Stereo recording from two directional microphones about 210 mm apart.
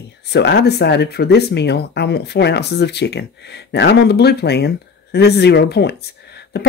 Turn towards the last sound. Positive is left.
turn(degrees=50)  # may be behind; listen again after turning